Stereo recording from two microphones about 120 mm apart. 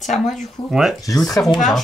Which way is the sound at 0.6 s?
50° left (ahead or behind).